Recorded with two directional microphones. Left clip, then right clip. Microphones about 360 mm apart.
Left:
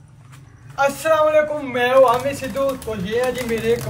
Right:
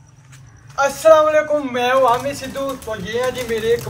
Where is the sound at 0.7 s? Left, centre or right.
Centre.